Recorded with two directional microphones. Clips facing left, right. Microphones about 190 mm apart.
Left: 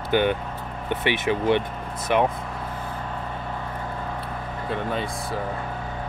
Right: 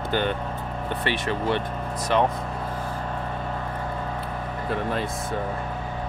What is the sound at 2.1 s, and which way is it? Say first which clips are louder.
Speech: left 1 dB; 15° left (ahead or behind).